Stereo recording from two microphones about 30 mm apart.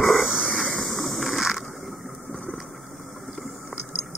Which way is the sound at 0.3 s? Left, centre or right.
Right.